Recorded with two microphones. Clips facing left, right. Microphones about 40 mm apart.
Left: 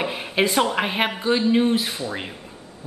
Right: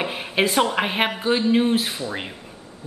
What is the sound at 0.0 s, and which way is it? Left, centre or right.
A woman's voice, centre.